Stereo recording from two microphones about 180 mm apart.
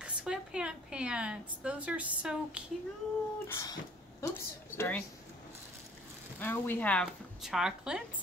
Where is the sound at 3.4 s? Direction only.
20° left (ahead or behind).